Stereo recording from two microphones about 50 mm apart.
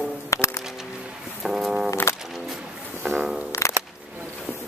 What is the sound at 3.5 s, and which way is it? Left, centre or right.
Music, left.